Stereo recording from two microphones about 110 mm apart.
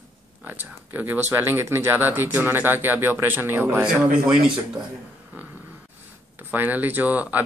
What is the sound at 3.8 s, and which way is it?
Speech, 10° right (ahead or behind).